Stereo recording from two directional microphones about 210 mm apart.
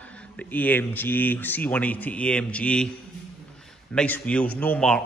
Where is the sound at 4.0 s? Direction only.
5° left (ahead or behind).